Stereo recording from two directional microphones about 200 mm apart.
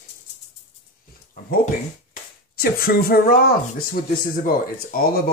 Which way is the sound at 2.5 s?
50° left (ahead or behind).